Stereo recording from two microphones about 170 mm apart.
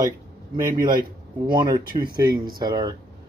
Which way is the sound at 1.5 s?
25° right (ahead or behind).